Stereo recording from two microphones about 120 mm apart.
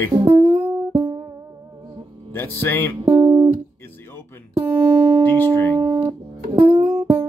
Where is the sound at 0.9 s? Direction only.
40° right (ahead or behind).